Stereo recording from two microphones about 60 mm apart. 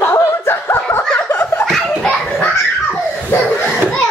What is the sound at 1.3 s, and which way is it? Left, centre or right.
Laughter, left.